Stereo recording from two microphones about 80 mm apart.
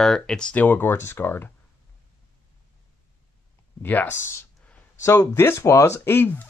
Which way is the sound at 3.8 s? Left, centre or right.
Left.